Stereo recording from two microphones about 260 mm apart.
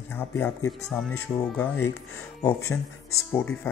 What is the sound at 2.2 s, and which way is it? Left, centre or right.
Speech, centre.